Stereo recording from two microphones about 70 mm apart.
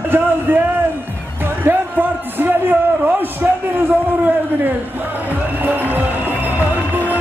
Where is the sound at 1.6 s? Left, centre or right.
Right.